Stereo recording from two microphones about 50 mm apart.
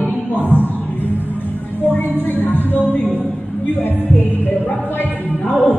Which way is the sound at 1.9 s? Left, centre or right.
Left.